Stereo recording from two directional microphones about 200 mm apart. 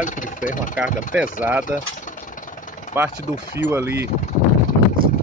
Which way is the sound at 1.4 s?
10° right (ahead or behind).